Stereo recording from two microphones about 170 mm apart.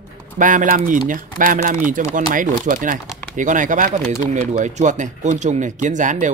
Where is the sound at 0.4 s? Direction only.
50° right (ahead or behind).